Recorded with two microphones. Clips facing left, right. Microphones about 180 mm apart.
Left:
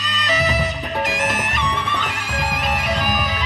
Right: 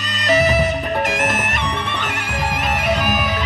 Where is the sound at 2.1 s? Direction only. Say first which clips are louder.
Right 2 dB; 60° right (ahead or behind).